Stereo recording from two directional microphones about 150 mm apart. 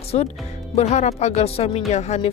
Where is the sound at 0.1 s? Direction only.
45° left (ahead or behind).